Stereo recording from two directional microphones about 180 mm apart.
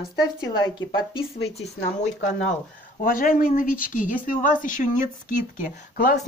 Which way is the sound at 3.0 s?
50° left (ahead or behind).